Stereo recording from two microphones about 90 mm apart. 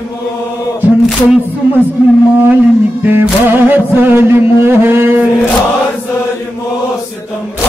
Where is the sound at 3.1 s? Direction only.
25° right (ahead or behind).